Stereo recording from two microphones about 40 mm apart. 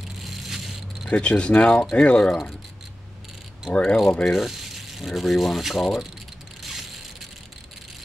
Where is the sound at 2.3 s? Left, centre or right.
Centre.